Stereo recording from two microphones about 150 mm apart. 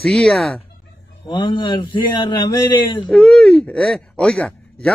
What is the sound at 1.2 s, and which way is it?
Speech, 35° left (ahead or behind).